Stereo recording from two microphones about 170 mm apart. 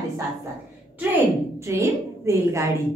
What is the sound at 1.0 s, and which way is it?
A woman's voice, 10° right (ahead or behind).